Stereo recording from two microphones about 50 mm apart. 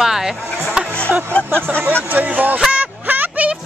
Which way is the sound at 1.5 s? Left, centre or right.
Right.